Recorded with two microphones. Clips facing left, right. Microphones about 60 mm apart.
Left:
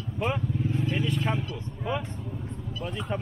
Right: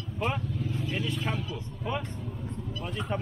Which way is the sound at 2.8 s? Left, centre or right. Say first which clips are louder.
Left 1 dB; centre.